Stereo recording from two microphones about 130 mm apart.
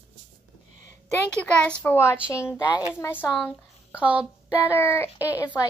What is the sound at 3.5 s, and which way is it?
Speech, 10° right (ahead or behind).